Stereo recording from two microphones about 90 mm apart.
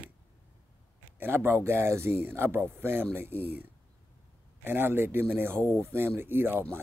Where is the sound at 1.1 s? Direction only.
25° right (ahead or behind).